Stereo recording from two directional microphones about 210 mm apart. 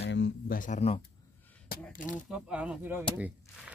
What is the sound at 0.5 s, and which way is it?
Speech, 35° left (ahead or behind).